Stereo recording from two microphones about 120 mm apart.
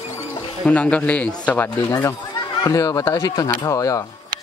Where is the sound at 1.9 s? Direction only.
25° left (ahead or behind).